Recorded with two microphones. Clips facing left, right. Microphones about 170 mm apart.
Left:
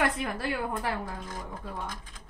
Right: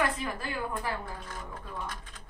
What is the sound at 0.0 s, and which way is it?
Speech, 75° left (ahead or behind).